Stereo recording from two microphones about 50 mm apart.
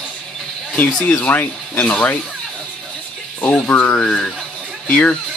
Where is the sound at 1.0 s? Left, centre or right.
Left.